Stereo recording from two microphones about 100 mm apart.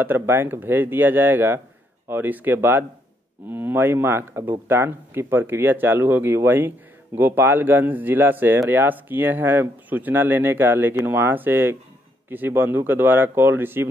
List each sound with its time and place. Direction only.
0.0 s speech: 20° right (ahead or behind)